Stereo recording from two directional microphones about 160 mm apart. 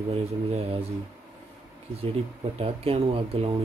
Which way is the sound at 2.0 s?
35° right (ahead or behind).